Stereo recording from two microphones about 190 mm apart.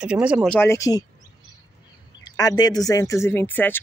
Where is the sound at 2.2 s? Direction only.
20° left (ahead or behind).